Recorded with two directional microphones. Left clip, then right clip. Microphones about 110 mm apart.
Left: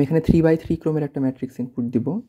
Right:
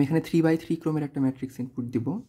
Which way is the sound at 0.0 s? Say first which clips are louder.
Left 5 dB; 15° left (ahead or behind).